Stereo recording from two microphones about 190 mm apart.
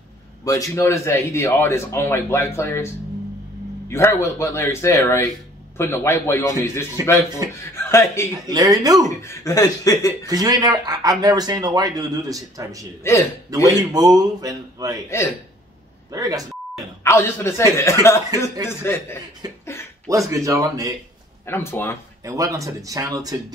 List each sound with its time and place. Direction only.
0.5 s speech: 15° left (ahead or behind)
3.9 s speech: 15° left (ahead or behind)
8.3 s speech: 20° right (ahead or behind)
9.1 s speech: 15° left (ahead or behind)
10.2 s speech: 20° right (ahead or behind)
13.0 s speech: 15° left (ahead or behind)
13.5 s speech: 20° right (ahead or behind)
15.0 s speech: 15° left (ahead or behind)
16.1 s speech: 20° right (ahead or behind)
17.0 s speech: 15° left (ahead or behind)
19.6 s a sound: 15° left (ahead or behind)
20.1 s speech: 15° right (ahead or behind)
21.5 s speech: 10° left (ahead or behind)
22.2 s speech: 15° right (ahead or behind)